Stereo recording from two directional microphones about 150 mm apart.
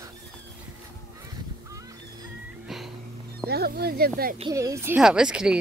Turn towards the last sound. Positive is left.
turn(degrees=-5)  # may be behind; listen again after turning